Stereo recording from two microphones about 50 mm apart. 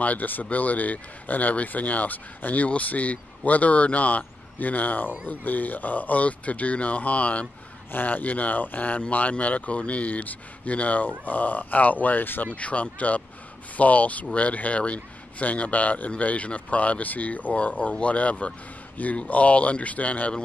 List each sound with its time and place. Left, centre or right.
0.0 s speech: left
12.5 s speech: left